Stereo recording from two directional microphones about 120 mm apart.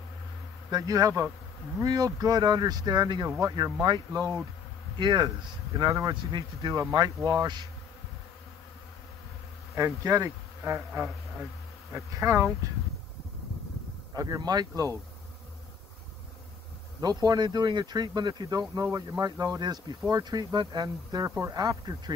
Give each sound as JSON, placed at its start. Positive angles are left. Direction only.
{"t": 0.7, "sound": "speech", "side_deg": -30}
{"t": 4.9, "sound": "speech", "side_deg": -40}
{"t": 9.8, "sound": "speech", "side_deg": -25}
{"t": 11.9, "sound": "speech", "side_deg": -25}
{"t": 14.1, "sound": "speech", "side_deg": -30}
{"t": 17.0, "sound": "speech", "side_deg": -35}